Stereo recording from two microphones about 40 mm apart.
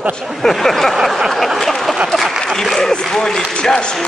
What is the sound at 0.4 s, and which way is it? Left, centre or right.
Speech, centre.